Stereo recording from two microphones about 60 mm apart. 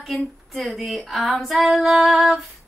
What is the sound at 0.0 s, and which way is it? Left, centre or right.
A woman's voice, centre.